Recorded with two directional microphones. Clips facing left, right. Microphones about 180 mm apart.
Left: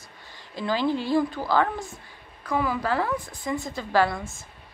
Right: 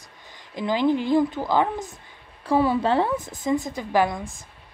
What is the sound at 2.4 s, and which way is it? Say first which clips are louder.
A woman's voice: right 6 dB; 30° right (ahead or behind).